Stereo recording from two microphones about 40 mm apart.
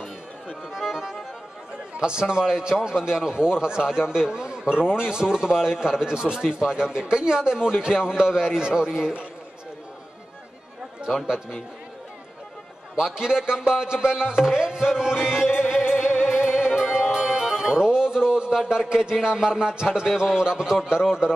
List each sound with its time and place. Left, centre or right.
0.7 s accordion: centre
2.0 s a man's voice: right
11.2 s a man's voice: centre
12.9 s music: centre